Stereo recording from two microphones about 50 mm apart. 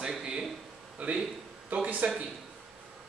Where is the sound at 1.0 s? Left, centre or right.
Right.